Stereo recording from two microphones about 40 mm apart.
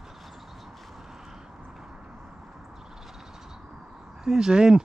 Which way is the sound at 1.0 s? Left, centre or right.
Centre.